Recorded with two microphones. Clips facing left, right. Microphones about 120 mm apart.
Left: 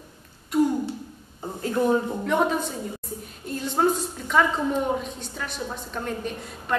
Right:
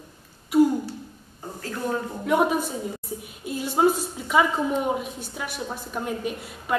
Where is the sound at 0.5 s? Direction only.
5° right (ahead or behind).